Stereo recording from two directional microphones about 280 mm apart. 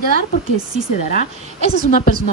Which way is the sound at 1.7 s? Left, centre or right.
Left.